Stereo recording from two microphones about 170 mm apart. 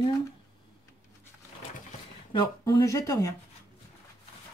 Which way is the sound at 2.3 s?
25° left (ahead or behind).